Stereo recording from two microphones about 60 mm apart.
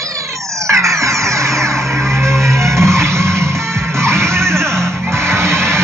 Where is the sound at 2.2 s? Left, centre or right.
Right.